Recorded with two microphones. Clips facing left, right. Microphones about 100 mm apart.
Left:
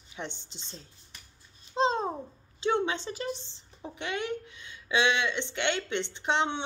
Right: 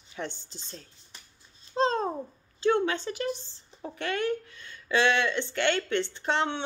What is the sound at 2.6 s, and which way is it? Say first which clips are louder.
A woman's voice: right 3 dB; 20° left (ahead or behind).